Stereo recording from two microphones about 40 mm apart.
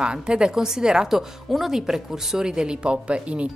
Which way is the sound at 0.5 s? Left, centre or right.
Centre.